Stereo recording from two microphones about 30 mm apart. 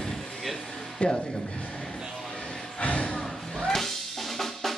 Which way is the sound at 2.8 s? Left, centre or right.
Left.